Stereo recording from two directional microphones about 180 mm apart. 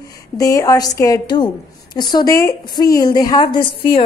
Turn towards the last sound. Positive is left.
turn(degrees=30)  # may be behind; listen again after turning